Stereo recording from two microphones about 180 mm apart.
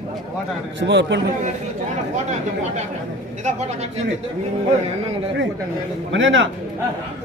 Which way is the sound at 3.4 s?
40° right (ahead or behind).